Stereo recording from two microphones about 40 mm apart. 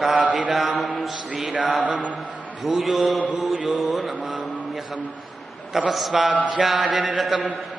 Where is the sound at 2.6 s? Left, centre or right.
Centre.